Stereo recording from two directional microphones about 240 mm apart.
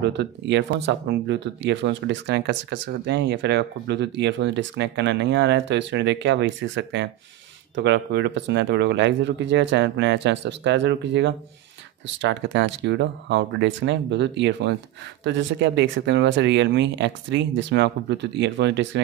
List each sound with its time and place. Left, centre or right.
0.0 s speech: right